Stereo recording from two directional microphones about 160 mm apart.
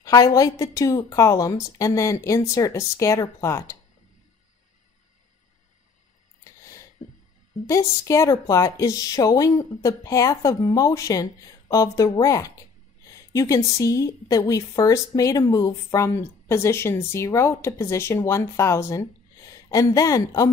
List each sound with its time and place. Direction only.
0.0 s a woman's voice: 20° left (ahead or behind)
8.0 s a woman's voice: 20° left (ahead or behind)